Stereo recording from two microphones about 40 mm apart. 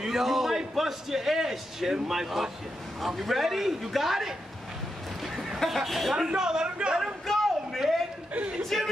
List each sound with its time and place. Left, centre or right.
0.0 s a sound: centre
0.6 s a man's voice: centre
5.6 s a man's voice: centre
6.2 s speech: centre
7.2 s a sound: centre
8.7 s a man's voice: centre